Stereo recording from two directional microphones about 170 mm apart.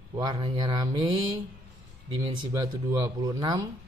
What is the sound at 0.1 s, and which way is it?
A man's voice, 25° right (ahead or behind).